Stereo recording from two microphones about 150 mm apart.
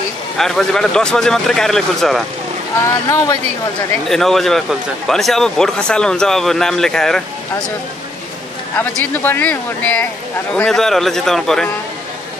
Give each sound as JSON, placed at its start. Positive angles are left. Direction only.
{"t": 0.4, "sound": "speech", "side_deg": 5}
{"t": 2.8, "sound": "speech", "side_deg": 20}
{"t": 4.1, "sound": "speech", "side_deg": 0}
{"t": 8.7, "sound": "speech", "side_deg": 10}